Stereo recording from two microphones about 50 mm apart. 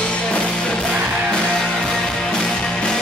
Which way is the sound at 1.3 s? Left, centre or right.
Centre.